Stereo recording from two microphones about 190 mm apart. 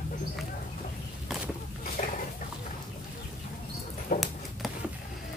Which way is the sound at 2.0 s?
35° left (ahead or behind).